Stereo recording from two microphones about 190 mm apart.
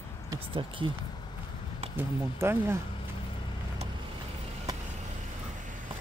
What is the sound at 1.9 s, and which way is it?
Speech, 10° right (ahead or behind).